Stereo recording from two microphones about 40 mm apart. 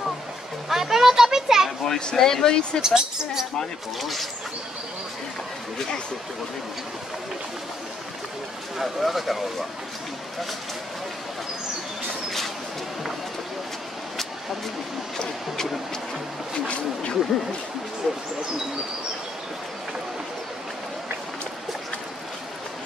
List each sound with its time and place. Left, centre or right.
0.7 s children playing: centre
2.1 s speech: centre
2.8 s a woman's voice: centre
4.0 s speech: centre
8.7 s speech: centre
15.1 s speech: centre
16.6 s speech: left